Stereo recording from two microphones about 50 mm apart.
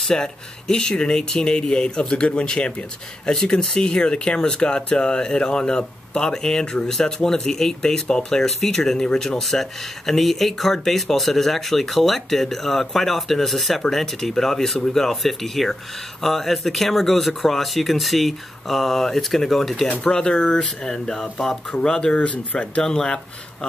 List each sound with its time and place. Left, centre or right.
0.0 s speech: centre
9.4 s speech: centre; by 22.7 s left
22.8 s speech: centre